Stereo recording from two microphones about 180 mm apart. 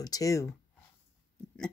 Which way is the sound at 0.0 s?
20° left (ahead or behind).